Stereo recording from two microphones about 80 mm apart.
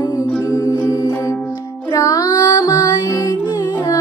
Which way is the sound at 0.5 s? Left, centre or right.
Left.